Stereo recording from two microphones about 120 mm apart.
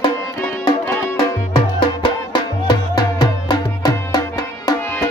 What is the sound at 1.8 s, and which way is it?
Music, 40° left (ahead or behind).